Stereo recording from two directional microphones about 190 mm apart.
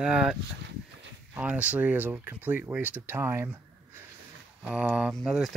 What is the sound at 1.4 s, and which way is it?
Speech, 5° right (ahead or behind).